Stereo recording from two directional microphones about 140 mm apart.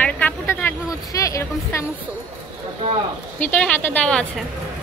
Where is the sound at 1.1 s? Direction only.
25° left (ahead or behind).